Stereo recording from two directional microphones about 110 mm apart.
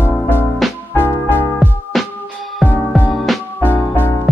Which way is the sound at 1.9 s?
Centre (ahead or behind).